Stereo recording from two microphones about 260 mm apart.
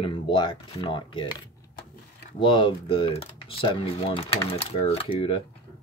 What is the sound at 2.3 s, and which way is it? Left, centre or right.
Speech, centre.